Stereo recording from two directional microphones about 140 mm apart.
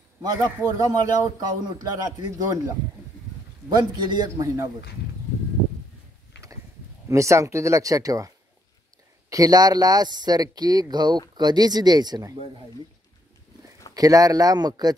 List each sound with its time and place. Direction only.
0.2 s a man's voice: 30° right (ahead or behind)
7.1 s speech: 20° right (ahead or behind)
9.3 s speech: 25° right (ahead or behind)
13.9 s speech: 25° right (ahead or behind)